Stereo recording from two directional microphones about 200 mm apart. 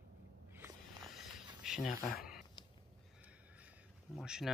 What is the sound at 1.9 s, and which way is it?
Speech, 45° left (ahead or behind).